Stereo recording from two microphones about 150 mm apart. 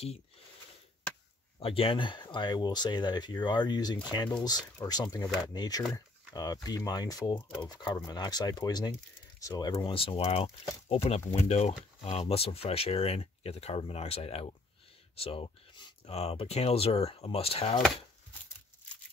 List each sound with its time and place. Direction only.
1.6 s speech: 40° left (ahead or behind)